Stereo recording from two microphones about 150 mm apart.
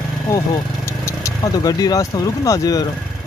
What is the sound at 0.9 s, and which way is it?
Speech, 20° left (ahead or behind).